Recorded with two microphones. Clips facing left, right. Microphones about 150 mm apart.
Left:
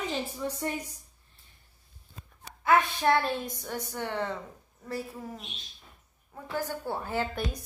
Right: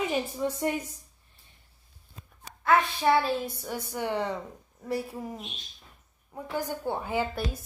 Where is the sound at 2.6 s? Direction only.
5° right (ahead or behind).